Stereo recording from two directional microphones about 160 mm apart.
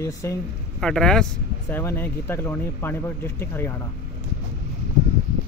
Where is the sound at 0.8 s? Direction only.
5° left (ahead or behind).